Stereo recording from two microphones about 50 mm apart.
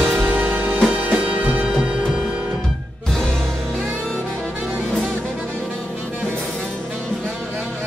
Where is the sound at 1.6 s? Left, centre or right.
Centre.